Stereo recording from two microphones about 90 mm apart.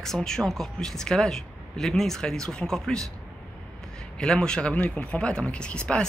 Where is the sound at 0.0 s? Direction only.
5° left (ahead or behind).